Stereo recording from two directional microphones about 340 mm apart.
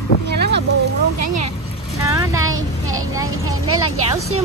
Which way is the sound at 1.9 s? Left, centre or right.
Centre.